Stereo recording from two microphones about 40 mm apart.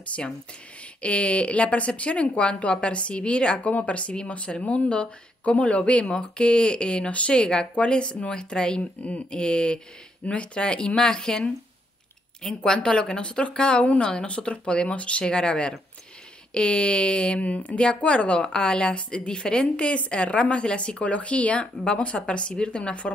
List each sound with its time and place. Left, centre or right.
0.1 s a woman's voice: left
7.1 s speech: left
7.3 s a woman's voice: left
10.2 s a woman's voice: left
12.7 s a woman's voice: left
17.4 s a woman's voice: left